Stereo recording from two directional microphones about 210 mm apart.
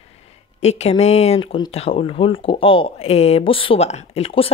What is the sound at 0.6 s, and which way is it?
Speech, 30° left (ahead or behind).